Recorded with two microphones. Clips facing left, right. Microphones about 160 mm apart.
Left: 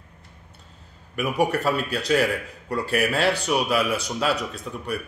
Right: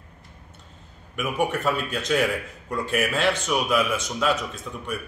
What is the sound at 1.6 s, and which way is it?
A man's voice, 35° left (ahead or behind).